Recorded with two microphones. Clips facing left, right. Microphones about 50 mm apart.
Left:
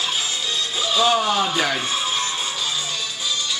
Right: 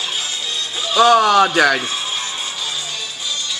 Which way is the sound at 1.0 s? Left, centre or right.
Right.